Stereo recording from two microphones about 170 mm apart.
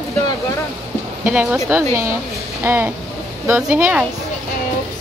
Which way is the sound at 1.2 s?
10° right (ahead or behind).